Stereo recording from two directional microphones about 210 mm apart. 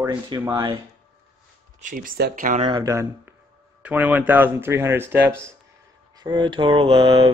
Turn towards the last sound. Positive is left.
turn(degrees=-20)  # may be behind; listen again after turning